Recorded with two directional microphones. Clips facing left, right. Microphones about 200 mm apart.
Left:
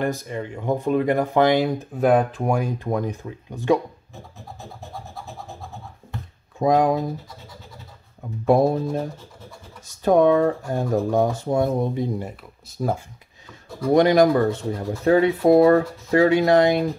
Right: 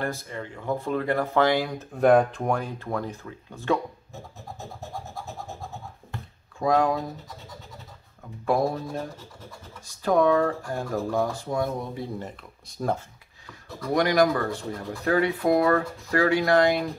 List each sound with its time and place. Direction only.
0.0 s speech: 15° left (ahead or behind)
2.0 s speech: centre (ahead or behind)
6.6 s speech: 20° left (ahead or behind)
8.5 s speech: 25° left (ahead or behind); by 13.0 s 5° left (ahead or behind)
13.5 s speech: 25° left (ahead or behind)